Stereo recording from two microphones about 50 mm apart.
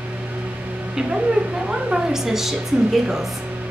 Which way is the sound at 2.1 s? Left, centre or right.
Centre.